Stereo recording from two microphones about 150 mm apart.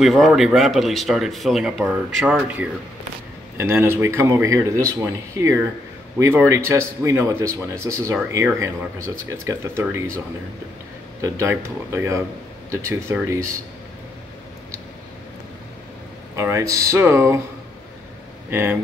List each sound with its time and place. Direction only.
0.0 s speech: centre (ahead or behind); by 13.6 s 20° right (ahead or behind)
16.3 s speech: 20° right (ahead or behind)
18.5 s speech: 15° right (ahead or behind)